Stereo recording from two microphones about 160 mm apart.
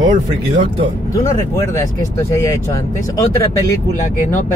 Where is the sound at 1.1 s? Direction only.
20° left (ahead or behind).